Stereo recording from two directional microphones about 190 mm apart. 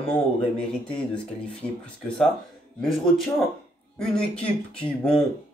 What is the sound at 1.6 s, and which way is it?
Speech, 5° left (ahead or behind).